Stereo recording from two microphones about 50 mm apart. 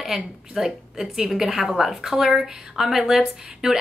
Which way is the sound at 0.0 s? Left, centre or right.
Centre.